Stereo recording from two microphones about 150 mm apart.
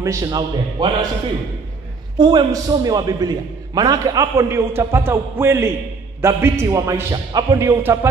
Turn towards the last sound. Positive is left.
turn(degrees=-15)  # may be behind; listen again after turning